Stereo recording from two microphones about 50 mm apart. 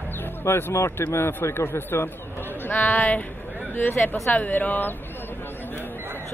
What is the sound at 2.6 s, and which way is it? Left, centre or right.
Speech, left.